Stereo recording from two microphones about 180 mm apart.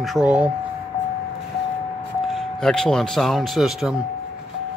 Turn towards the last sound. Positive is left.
turn(degrees=0)  # may be behind; listen again after turning